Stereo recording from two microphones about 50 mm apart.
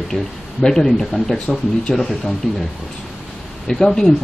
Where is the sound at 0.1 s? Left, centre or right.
Centre.